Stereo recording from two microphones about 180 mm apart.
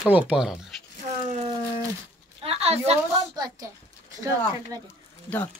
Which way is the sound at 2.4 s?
35° right (ahead or behind).